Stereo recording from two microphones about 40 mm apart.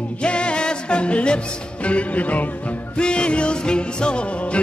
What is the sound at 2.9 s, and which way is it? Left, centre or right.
Music, left.